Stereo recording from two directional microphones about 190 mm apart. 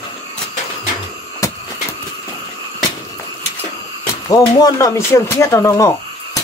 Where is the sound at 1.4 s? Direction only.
15° left (ahead or behind).